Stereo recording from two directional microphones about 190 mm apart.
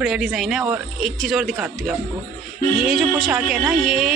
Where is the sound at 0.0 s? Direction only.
Centre (ahead or behind).